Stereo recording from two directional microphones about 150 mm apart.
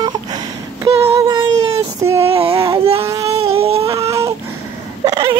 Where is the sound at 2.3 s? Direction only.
40° right (ahead or behind).